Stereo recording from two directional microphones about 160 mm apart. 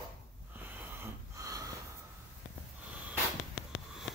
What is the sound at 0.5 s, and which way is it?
Snort, 10° right (ahead or behind).